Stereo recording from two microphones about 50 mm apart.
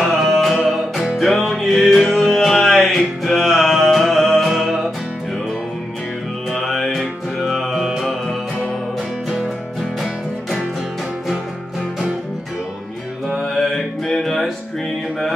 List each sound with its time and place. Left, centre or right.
0.0 s music: centre
6.5 s music: centre
13.3 s music: centre